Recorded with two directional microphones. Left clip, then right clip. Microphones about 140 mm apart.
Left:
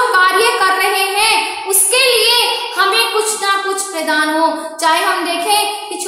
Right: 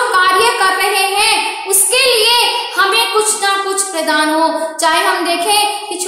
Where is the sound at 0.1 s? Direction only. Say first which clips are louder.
Even; 15° right (ahead or behind).